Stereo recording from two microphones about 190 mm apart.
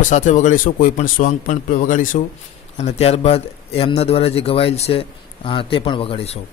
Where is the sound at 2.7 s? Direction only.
35° left (ahead or behind).